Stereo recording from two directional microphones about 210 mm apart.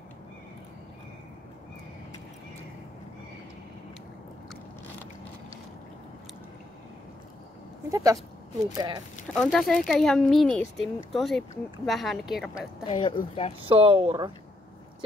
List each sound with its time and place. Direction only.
7.9 s speech: 15° right (ahead or behind)
9.3 s speech: 5° left (ahead or behind)
12.8 s a woman's voice: 25° left (ahead or behind)
13.6 s speech: 25° right (ahead or behind)